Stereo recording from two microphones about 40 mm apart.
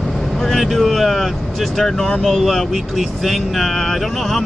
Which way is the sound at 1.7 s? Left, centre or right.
Centre.